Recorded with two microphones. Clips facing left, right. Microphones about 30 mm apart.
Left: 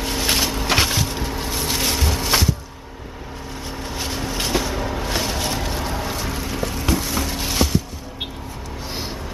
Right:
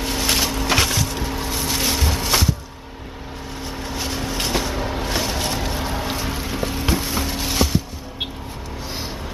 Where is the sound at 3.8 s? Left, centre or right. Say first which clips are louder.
Even; centre.